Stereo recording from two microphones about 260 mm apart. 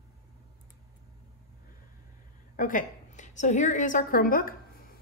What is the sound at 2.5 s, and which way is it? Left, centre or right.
A woman's voice, left.